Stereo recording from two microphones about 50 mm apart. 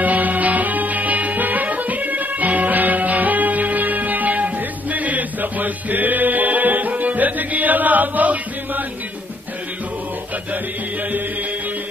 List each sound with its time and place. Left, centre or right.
0.0 s music: right